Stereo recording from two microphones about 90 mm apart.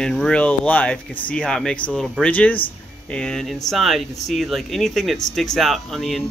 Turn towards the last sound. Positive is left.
turn(degrees=5)  # may be behind; listen again after turning